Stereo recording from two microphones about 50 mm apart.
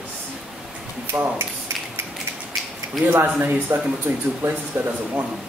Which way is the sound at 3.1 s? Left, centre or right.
Right.